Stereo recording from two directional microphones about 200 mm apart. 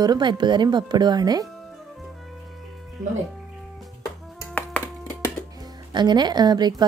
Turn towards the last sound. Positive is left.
turn(degrees=-20)  # may be behind; listen again after turning